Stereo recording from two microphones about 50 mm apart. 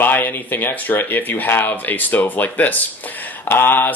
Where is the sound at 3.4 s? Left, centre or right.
Left.